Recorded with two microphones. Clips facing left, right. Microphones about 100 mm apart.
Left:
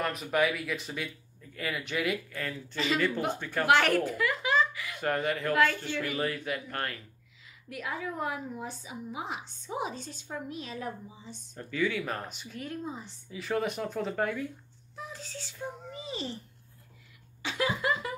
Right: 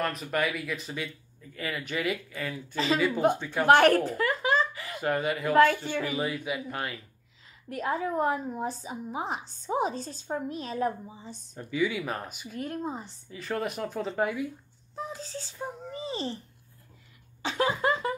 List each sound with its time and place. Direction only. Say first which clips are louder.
0.0 s speech: left 1 dB; centre (ahead or behind)
3.6 s a woman's voice: right 5 dB; 40° right (ahead or behind)
5.0 s speech: right 2 dB; 5° right (ahead or behind)
7.7 s a woman's voice: right 7 dB; 40° right (ahead or behind)
11.5 s speech: right 2 dB; 10° right (ahead or behind)
12.5 s speech: right 4 dB; 45° right (ahead or behind)
13.3 s speech: left 1 dB; centre (ahead or behind)
15.0 s a child's voice: right 5 dB; 35° right (ahead or behind)
17.4 s a sound: right 4 dB; 35° right (ahead or behind)